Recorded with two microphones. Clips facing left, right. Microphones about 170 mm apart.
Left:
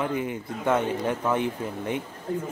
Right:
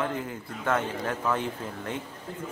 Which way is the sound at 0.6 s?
20° left (ahead or behind).